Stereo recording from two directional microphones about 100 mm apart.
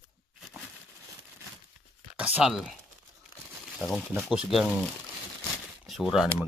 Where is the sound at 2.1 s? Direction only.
15° right (ahead or behind).